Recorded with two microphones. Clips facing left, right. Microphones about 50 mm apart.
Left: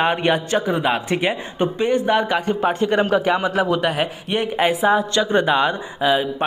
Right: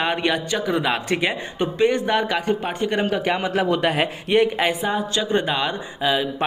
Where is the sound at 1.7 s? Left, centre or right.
Right.